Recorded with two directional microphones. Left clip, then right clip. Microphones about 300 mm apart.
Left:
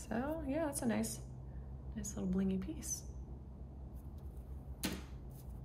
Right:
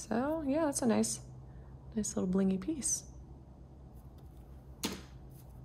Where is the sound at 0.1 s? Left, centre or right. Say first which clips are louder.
Right 6 dB; centre.